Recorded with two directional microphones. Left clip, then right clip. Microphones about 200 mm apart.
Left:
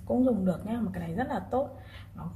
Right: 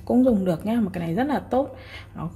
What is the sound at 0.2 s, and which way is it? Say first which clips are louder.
A woman's voice: right 8 dB; 50° right (ahead or behind).